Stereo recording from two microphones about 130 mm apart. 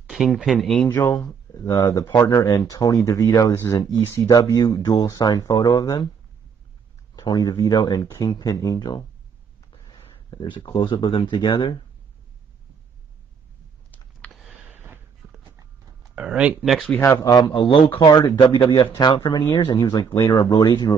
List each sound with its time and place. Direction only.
0.0 s speech: centre (ahead or behind)
0.7 s speech: 20° left (ahead or behind)
7.2 s speech: 30° left (ahead or behind)
14.2 s sniff: 10° left (ahead or behind)
14.6 s a sound: 15° right (ahead or behind)
16.2 s speech: 10° right (ahead or behind)
17.0 s speech: 25° left (ahead or behind)